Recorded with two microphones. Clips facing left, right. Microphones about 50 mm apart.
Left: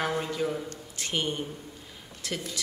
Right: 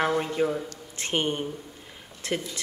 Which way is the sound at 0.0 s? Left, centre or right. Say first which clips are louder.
Right 4 dB; right.